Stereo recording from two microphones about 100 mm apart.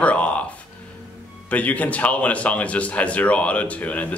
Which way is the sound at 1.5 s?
15° left (ahead or behind).